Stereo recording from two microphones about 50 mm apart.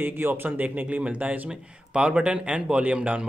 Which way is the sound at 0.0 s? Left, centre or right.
Right.